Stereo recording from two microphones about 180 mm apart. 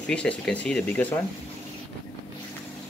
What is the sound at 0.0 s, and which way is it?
Speech, 5° left (ahead or behind).